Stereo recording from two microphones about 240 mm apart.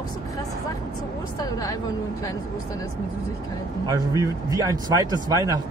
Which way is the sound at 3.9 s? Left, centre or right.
Centre.